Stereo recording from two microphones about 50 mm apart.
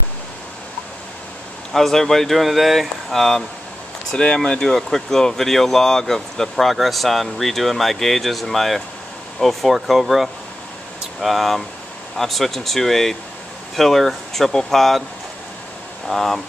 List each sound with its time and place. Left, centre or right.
1.7 s speech: centre
3.2 s speech: centre
4.1 s speech: left; by 15.0 s centre
16.1 s speech: centre